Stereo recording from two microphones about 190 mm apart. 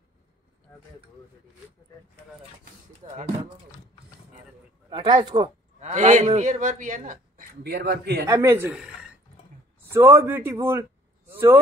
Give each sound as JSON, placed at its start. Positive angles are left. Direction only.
{"t": 3.0, "sound": "a man's voice", "side_deg": -40}
{"t": 4.8, "sound": "speech", "side_deg": -20}
{"t": 5.8, "sound": "a man's voice", "side_deg": -40}
{"t": 8.3, "sound": "a man's voice", "side_deg": -15}